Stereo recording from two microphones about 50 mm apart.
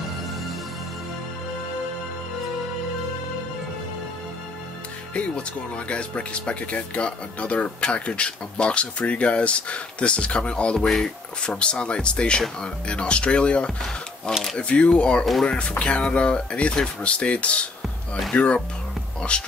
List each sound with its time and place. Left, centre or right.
5.1 s speech: left